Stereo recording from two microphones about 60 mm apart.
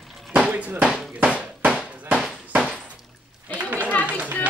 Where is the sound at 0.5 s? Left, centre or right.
Right.